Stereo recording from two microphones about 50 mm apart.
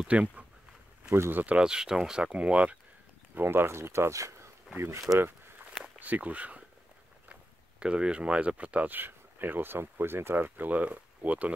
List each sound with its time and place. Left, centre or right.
0.1 s speech: right
1.6 s speech: centre
3.3 s speech: right
4.7 s speech: right
5.9 s speech: right
7.8 s speech: right
8.9 s speech: right